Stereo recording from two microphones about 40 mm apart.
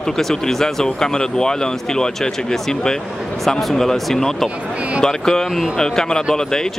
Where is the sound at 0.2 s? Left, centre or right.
Centre.